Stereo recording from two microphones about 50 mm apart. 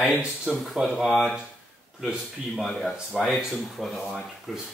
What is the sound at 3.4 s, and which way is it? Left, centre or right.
Speech, centre.